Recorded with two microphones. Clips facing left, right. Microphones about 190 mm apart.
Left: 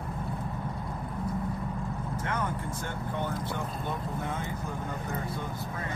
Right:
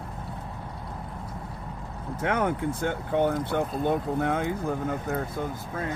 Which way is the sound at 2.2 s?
65° right (ahead or behind).